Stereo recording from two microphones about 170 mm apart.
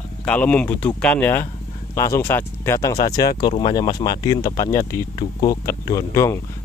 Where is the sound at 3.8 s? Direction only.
20° left (ahead or behind).